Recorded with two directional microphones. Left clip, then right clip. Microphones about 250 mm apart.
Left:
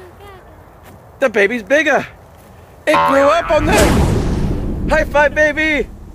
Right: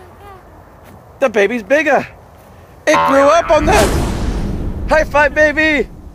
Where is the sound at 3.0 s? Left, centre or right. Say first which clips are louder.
Even; centre.